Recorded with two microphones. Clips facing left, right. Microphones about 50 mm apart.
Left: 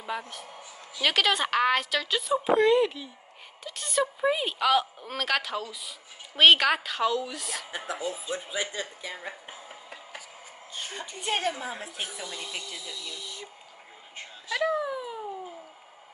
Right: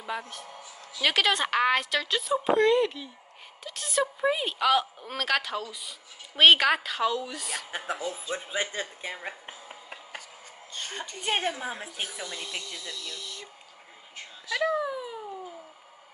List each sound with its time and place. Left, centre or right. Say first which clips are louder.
0.1 s a woman's voice: even; centre
0.5 s a sound: even; centre
1.0 s a woman's voice: even; centre
7.7 s speech: even; right
11.2 s a woman's voice: even; right
12.1 s a woman's voice: right 1 dB; centre
14.5 s a child's voice: even; centre